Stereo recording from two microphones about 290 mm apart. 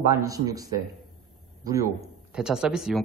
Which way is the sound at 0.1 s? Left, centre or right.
Centre.